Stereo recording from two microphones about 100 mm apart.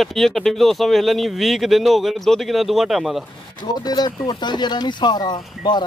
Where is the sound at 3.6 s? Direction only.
45° left (ahead or behind).